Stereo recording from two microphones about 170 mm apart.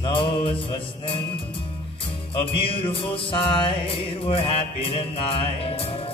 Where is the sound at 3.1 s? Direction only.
30° left (ahead or behind).